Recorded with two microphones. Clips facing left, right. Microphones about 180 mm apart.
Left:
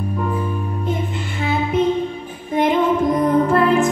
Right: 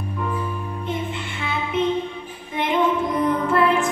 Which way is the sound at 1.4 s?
40° left (ahead or behind).